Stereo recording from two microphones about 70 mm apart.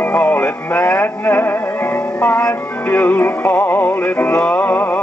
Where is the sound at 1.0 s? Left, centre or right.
Left.